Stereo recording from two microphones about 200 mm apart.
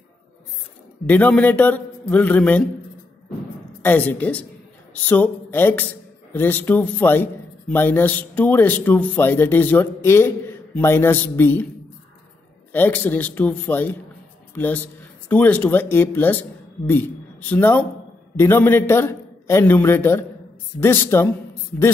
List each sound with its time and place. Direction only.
1.0 s speech: 5° left (ahead or behind)
3.8 s speech: 10° left (ahead or behind)
12.7 s a man's voice: 10° left (ahead or behind)